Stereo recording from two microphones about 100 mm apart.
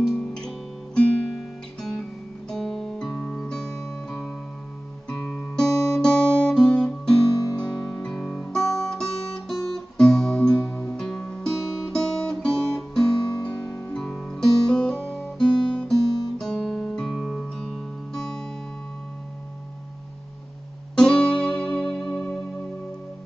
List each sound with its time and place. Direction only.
0.0 s guitar: 5° left (ahead or behind)
2.5 s music: 5° left (ahead or behind)
5.1 s guitar: 10° left (ahead or behind)
7.3 s music: 40° left (ahead or behind)
7.7 s music: 5° left (ahead or behind)
8.5 s music: 5° left (ahead or behind)
11.0 s guitar: 5° left (ahead or behind)
13.9 s music: 5° left (ahead or behind)
15.0 s guitar: 5° left (ahead or behind)
20.9 s music: 5° left (ahead or behind)